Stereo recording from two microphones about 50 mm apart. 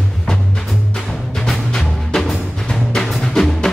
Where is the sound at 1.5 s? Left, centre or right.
Centre.